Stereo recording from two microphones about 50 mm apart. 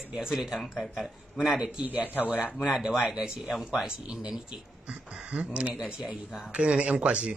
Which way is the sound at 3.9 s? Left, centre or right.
Centre.